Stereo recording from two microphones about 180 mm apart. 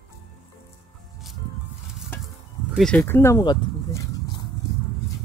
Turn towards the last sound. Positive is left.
turn(degrees=20)  # may be behind; listen again after turning